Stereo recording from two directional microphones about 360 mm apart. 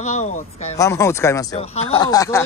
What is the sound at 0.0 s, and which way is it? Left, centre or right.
Speech, centre.